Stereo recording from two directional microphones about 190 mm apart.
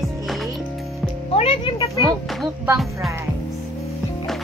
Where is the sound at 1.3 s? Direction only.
30° left (ahead or behind).